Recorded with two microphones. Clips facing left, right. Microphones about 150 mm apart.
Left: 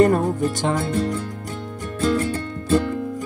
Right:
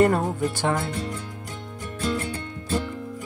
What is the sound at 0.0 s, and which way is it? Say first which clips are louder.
Music: left 3 dB; 15° left (ahead or behind).